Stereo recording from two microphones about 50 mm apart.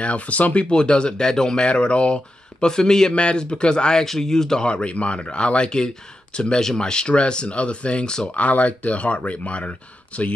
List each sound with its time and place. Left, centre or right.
0.0 s speech: left; by 4.6 s centre
4.6 s speech: left
8.4 s speech: left